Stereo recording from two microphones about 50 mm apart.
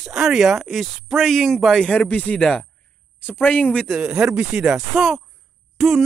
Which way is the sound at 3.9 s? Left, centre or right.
Centre.